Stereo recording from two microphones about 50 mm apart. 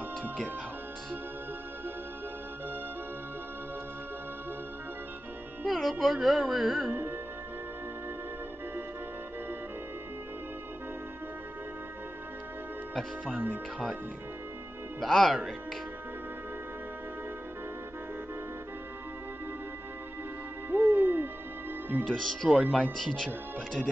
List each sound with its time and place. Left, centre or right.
5.7 s speech: centre
6.9 s music: right
12.9 s speech: centre
15.0 s speech: centre
20.7 s music: right
22.0 s speech: centre